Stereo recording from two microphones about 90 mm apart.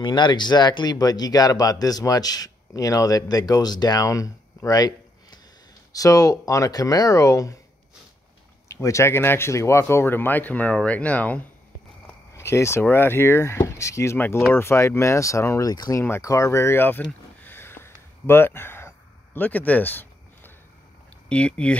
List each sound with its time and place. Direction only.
0.0 s speech: 55° left (ahead or behind); by 7.6 s 40° left (ahead or behind)
8.8 s speech: 30° left (ahead or behind); by 11.4 s 15° left (ahead or behind)
12.4 s speech: 30° left (ahead or behind)
14.1 s speech: 20° left (ahead or behind)
15.7 s speech: 45° left (ahead or behind)
16.0 s speech: 30° left (ahead or behind)
17.0 s a sound: 20° left (ahead or behind)
21.3 s speech: 10° left (ahead or behind)